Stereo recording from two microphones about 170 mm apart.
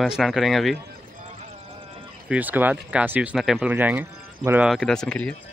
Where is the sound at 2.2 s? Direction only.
10° right (ahead or behind).